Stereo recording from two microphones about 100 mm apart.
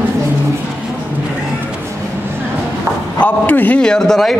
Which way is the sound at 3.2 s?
15° left (ahead or behind).